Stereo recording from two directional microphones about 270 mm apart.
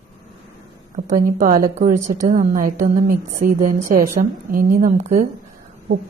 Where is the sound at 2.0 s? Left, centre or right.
Right.